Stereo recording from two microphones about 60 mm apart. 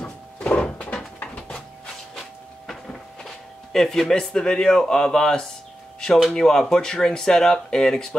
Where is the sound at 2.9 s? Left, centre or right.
Centre.